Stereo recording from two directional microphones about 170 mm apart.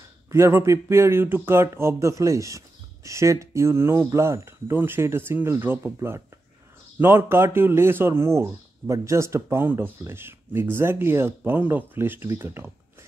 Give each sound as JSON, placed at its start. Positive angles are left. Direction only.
{"t": 0.3, "sound": "speech", "side_deg": -15}